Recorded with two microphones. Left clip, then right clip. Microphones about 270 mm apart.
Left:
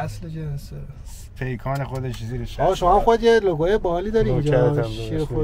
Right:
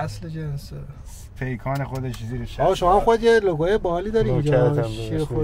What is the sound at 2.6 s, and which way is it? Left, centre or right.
Speech, centre.